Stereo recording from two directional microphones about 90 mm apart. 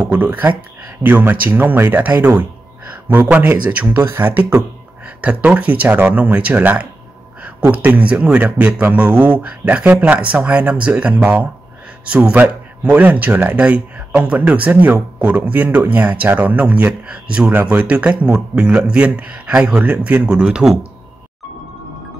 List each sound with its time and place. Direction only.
0.0 s speech: 20° right (ahead or behind)